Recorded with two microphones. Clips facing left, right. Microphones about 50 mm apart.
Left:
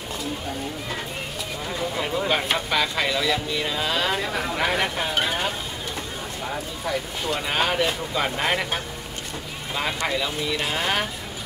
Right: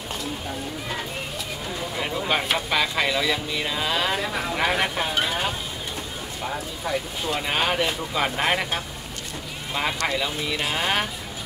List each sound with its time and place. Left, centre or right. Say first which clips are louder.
2.0 s speech: even; centre
6.9 s speech: even; centre
10.0 s speech: even; centre